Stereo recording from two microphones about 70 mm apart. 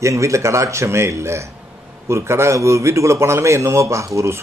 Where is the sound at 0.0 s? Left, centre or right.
Right.